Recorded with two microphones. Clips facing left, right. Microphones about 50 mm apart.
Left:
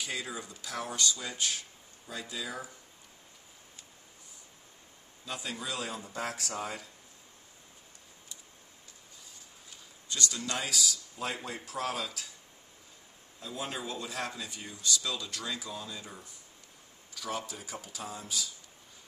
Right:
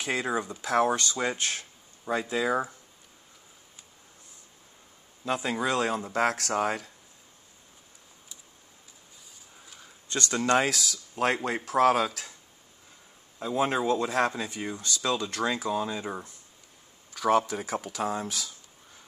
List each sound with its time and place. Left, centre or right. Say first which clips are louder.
0.0 s speech: right 9 dB; right
5.2 s speech: right 10 dB; right
10.0 s speech: right 9 dB; right
13.4 s speech: right 12 dB; right